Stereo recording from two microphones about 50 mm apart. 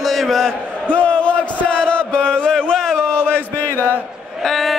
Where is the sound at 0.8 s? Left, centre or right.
Left; by 3.1 s centre.